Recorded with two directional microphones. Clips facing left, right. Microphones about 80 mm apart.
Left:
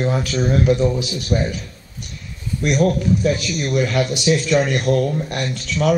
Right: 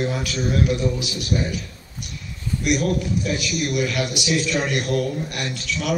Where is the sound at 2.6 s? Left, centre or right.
Left.